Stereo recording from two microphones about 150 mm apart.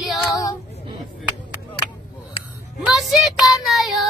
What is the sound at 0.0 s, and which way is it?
Female singing, centre (ahead or behind).